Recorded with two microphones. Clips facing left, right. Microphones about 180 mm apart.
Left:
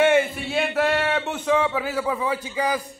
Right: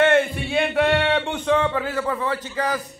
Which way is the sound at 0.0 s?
10° left (ahead or behind).